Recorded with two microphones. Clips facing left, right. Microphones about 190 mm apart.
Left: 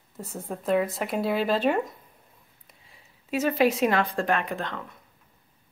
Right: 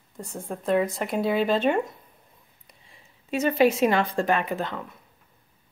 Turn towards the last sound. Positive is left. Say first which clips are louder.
# right 2 dB
turn(degrees=-5)  # may be behind; listen again after turning